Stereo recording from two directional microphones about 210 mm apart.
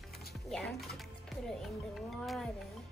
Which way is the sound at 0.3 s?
Centre (ahead or behind).